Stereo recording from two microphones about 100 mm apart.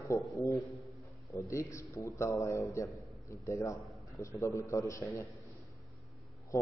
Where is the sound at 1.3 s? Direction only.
30° left (ahead or behind).